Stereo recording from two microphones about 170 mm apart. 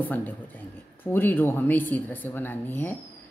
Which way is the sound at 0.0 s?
10° left (ahead or behind).